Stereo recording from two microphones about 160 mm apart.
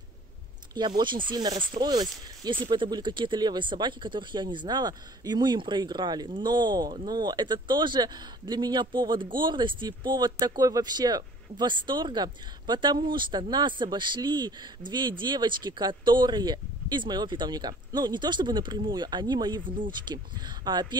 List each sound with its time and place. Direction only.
0.7 s speech: 30° right (ahead or behind)